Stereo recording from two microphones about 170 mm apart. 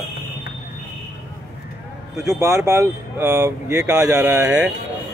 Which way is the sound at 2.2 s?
20° right (ahead or behind).